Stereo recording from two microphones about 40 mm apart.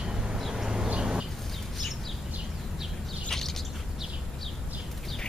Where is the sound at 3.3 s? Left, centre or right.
Centre.